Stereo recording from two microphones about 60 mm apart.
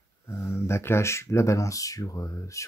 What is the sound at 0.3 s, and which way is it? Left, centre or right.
Speech, left.